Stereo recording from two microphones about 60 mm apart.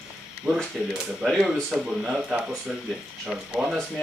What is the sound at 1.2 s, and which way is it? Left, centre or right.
Speech, centre.